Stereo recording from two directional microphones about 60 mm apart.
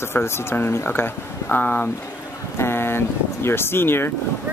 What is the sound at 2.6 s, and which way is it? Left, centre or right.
Speech, left.